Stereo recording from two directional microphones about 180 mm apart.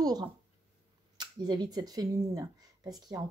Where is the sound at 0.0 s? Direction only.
20° right (ahead or behind).